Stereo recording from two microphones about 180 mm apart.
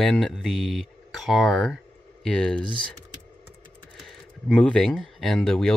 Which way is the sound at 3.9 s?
Centre (ahead or behind).